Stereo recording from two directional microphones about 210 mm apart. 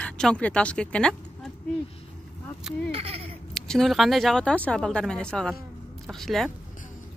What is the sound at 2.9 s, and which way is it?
Speech, 25° right (ahead or behind).